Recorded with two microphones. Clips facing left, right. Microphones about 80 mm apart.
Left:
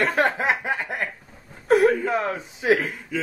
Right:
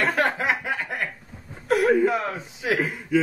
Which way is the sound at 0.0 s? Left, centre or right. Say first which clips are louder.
Left 1 dB; centre.